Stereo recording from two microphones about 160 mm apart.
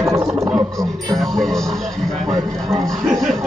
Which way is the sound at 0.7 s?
Centre (ahead or behind).